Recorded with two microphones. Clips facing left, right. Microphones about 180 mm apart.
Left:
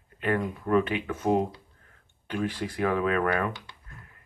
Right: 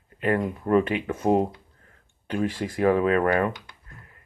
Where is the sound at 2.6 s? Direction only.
40° right (ahead or behind).